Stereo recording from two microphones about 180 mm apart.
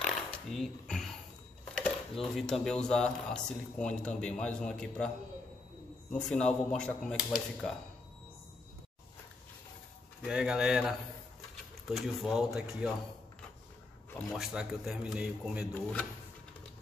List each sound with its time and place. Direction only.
0.0 s a sound: 5° left (ahead or behind)
1.8 s speech: centre (ahead or behind)
6.1 s speech: 5° left (ahead or behind)
10.2 s speech: 5° right (ahead or behind)
14.3 s speech: 5° right (ahead or behind)
15.7 s speech: 5° left (ahead or behind)